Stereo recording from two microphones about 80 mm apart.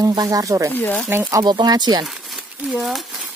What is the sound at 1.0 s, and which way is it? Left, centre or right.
Speech, right.